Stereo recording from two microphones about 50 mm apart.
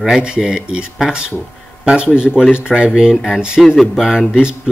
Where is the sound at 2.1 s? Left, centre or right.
Centre.